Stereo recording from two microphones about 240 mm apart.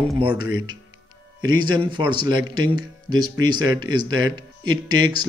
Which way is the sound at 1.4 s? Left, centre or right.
Centre.